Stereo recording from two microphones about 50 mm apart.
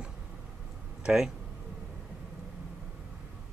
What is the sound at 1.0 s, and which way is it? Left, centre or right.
Speech, centre.